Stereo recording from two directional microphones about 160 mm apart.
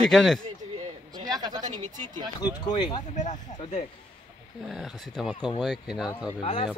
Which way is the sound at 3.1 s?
50° left (ahead or behind).